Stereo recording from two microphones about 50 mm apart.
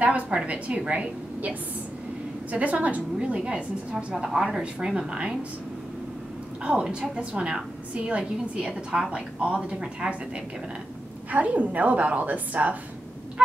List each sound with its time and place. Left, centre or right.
0.0 s a woman's voice: right
3.2 s a woman's voice: centre
6.6 s a woman's voice: centre
8.6 s a woman's voice: centre
11.2 s a woman's voice: right